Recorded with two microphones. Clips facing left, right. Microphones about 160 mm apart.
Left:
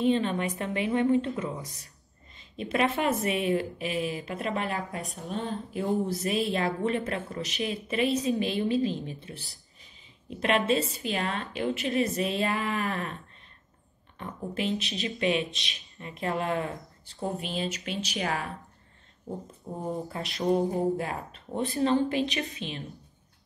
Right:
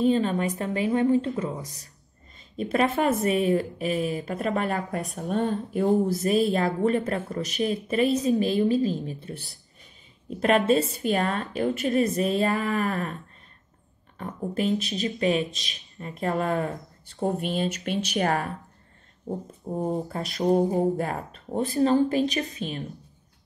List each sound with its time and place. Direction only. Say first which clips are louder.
0.0 s a woman's voice: right 3 dB; 40° right (ahead or behind)
17.1 s a woman's voice: right 6 dB; 50° right (ahead or behind)
19.7 s a woman's voice: right 6 dB; 50° right (ahead or behind)